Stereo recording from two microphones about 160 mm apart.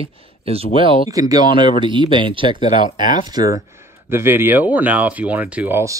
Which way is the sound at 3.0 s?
55° left (ahead or behind).